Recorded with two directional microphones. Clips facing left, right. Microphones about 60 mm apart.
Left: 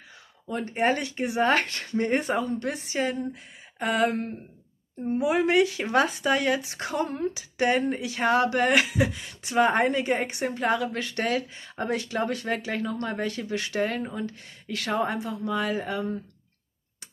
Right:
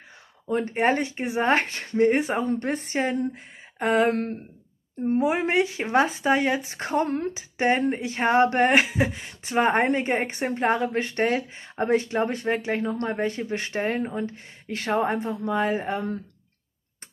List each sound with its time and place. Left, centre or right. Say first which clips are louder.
0.5 s speech: right 3 dB; right
2.0 s speech: right 5 dB; centre
2.3 s a woman's voice: right 2 dB; right
4.1 s speech: right 4 dB; right
5.2 s speech: left 3 dB; right
7.3 s a woman's voice: even; right